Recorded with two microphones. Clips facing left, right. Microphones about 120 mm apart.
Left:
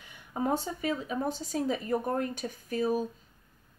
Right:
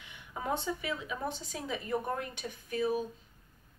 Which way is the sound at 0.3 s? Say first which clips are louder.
Left 4 dB; 40° left (ahead or behind).